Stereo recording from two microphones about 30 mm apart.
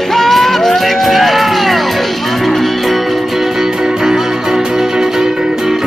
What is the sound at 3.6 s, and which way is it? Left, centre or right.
Music, centre.